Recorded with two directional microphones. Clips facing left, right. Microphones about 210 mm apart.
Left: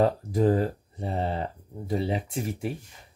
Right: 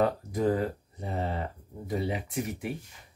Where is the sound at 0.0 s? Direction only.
30° left (ahead or behind).